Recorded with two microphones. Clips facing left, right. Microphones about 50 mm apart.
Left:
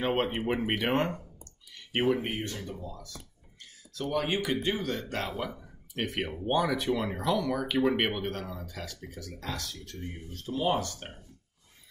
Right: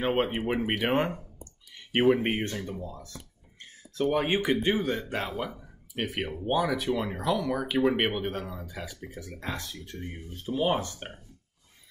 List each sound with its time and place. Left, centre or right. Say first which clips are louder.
0.0 s speech: right 2 dB; centre
1.7 s a sound: right 4 dB; right
2.2 s speech: right 5 dB; right
5.4 s speech: right 1 dB; centre; by 11.1 s right